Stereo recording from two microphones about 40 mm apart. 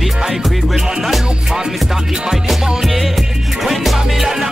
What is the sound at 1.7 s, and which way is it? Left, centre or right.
Music, centre.